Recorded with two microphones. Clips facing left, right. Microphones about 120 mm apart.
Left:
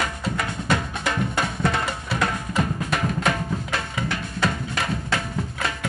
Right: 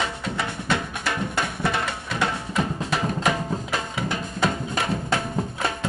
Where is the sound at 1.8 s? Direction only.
5° left (ahead or behind).